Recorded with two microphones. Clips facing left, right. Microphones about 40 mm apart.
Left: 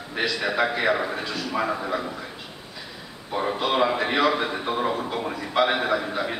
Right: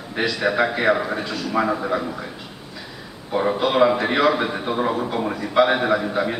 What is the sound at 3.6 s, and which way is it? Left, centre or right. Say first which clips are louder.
A man's voice: right 5 dB; centre.